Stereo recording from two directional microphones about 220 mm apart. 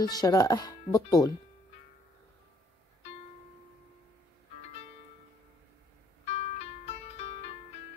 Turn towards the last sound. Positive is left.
turn(degrees=30)  # may be behind; listen again after turning